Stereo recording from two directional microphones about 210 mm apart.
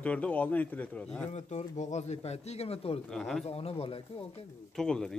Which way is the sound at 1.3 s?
30° left (ahead or behind).